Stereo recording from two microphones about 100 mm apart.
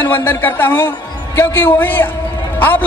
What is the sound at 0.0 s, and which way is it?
A man's voice, 20° left (ahead or behind).